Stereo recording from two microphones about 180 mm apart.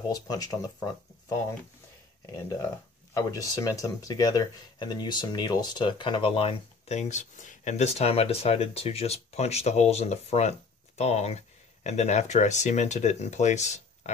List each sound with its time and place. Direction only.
0.1 s speech: 20° left (ahead or behind)
3.2 s speech: 20° left (ahead or behind); by 14.1 s 40° left (ahead or behind)